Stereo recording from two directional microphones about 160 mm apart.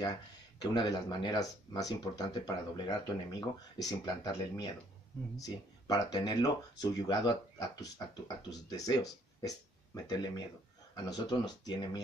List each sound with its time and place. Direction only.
0.6 s speech: 25° left (ahead or behind)